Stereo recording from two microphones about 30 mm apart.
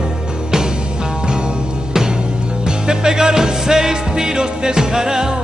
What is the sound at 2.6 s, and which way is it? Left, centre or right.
Music, right.